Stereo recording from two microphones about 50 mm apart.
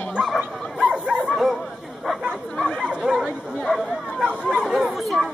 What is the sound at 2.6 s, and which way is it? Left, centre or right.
Dog, centre.